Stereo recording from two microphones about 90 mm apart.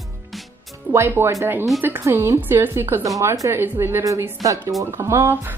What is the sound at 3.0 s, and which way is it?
Speech, 40° right (ahead or behind).